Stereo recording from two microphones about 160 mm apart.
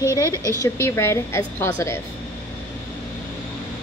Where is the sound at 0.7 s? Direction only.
15° left (ahead or behind).